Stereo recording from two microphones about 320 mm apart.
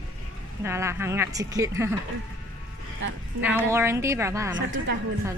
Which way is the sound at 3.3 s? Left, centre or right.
Centre.